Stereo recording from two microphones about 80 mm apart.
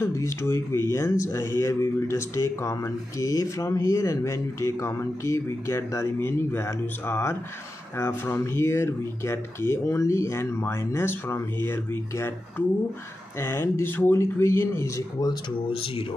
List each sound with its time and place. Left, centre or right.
0.0 s speech: left